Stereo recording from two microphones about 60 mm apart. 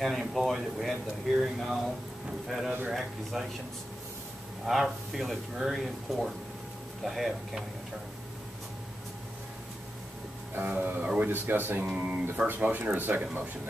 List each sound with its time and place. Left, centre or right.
0.0 s speech: centre
4.6 s speech: centre
10.8 s speech: right
11.8 s speech: centre